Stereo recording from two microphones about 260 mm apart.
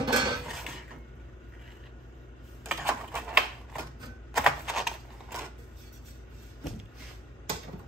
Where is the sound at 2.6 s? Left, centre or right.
Centre.